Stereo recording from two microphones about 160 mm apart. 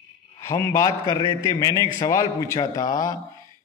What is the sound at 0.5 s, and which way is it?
A man's voice, 20° left (ahead or behind).